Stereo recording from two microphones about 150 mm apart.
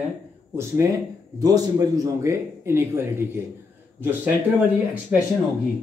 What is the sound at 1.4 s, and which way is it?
A man's voice, 25° right (ahead or behind).